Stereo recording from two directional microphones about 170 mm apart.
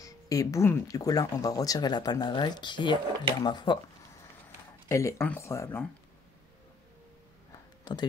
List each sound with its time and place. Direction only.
0.0 s speech: 20° left (ahead or behind)
4.8 s speech: 15° left (ahead or behind)
7.9 s speech: 25° left (ahead or behind)